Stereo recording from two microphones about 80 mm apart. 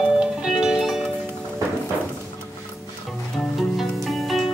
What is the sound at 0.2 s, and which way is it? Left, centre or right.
Music, centre.